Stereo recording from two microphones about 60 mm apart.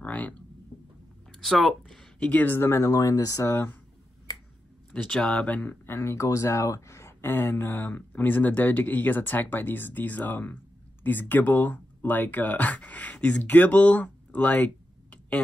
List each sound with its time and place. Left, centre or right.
0.0 s a sound: left
1.4 s speech: centre
2.1 s speech: left
2.5 s speech: left
2.8 s speech: left
3.4 s speech: left
4.9 s speech: centre
5.9 s speech: left
6.2 s speech: left